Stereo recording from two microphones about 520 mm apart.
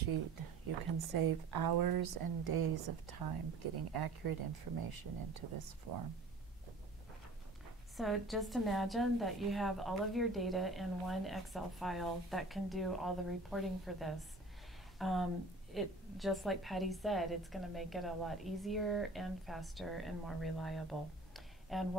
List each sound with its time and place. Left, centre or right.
0.9 s speech: right
8.0 s a woman's voice: centre
21.3 s a sound: centre